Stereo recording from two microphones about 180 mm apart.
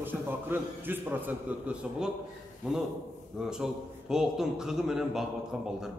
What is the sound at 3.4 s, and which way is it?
A man's voice, 5° right (ahead or behind).